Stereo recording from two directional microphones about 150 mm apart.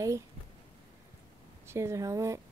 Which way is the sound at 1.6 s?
20° right (ahead or behind).